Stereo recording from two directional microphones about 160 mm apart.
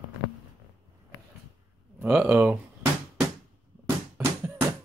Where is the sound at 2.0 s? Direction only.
10° right (ahead or behind).